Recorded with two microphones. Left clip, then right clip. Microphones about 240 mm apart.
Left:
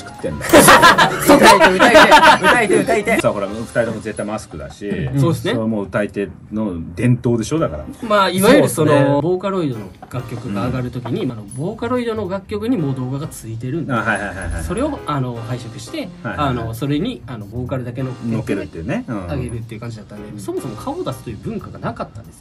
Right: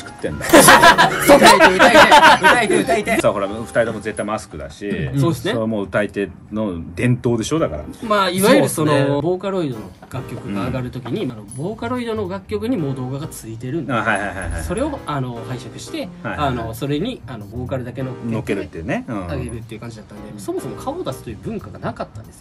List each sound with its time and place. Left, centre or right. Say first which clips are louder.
0.4 s speech: left 1 dB; centre
3.3 s speech: right 1 dB; centre
5.1 s speech: left 2 dB; centre
5.6 s speech: even; centre
8.0 s speech: left 2 dB; centre
13.8 s speech: even; centre
14.7 s speech: left 2 dB; centre
18.9 s speech: right 1 dB; centre
19.2 s speech: left 1 dB; centre